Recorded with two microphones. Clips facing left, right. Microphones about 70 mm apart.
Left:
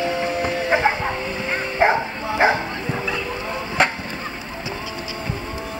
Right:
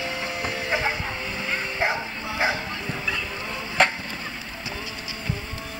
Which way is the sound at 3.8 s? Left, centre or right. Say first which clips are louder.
Left 1 dB; centre.